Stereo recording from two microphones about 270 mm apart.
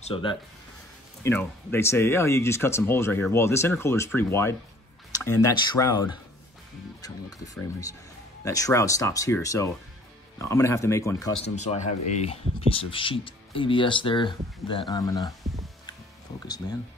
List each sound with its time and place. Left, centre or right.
0.0 s speech: centre
1.2 s speech: centre
11.5 s speech: left